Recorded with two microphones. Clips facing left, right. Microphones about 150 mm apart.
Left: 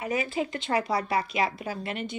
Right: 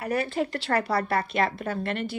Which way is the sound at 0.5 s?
60° right (ahead or behind).